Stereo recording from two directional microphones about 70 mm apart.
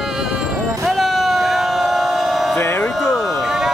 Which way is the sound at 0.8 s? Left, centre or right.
Centre.